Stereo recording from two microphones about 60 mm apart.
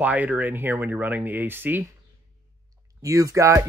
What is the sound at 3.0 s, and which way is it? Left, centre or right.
Speech, right.